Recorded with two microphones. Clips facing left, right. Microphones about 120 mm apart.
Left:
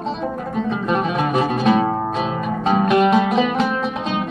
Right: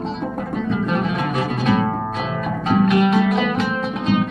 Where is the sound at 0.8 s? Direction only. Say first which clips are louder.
Left 2 dB; 25° left (ahead or behind).